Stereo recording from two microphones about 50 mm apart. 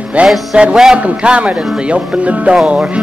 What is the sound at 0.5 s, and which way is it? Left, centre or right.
Speech, centre.